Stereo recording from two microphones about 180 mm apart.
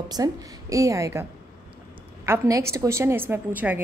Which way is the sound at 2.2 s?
15° right (ahead or behind).